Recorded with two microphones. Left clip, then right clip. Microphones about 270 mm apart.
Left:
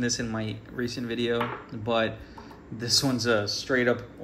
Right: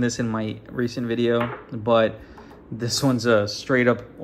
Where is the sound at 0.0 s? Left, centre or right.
Centre.